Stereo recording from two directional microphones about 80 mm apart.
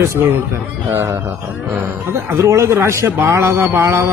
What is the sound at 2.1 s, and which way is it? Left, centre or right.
A man's voice, right.